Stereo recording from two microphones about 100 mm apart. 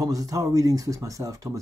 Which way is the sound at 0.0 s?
35° right (ahead or behind).